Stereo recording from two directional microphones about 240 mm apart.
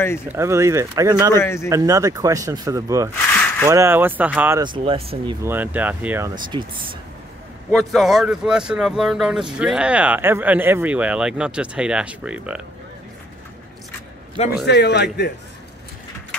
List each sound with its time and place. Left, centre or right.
0.3 s speech: centre
1.3 s speech: centre
1.7 s speech: centre
3.3 s a sound: centre
3.6 s speech: centre
7.7 s speech: centre
14.4 s a man's voice: left
14.7 s a man's voice: left